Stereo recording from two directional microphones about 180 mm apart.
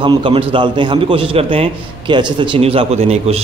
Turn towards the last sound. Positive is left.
turn(degrees=-35)  # may be behind; listen again after turning